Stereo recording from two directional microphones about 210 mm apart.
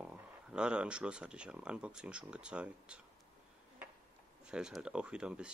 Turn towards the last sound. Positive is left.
turn(degrees=-5)  # may be behind; listen again after turning